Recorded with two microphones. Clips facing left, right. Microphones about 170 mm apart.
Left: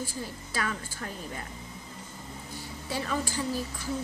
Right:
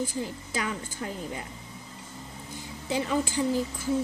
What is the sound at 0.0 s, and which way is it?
A woman's voice, 20° right (ahead or behind).